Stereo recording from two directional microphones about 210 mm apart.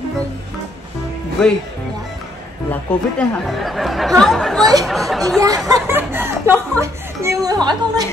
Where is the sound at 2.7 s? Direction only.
5° left (ahead or behind).